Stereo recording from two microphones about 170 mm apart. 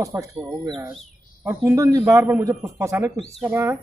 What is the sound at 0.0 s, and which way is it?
Speech, 20° right (ahead or behind).